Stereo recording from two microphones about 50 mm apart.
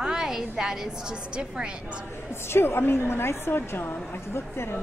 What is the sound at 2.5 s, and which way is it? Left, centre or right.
A woman's voice, left.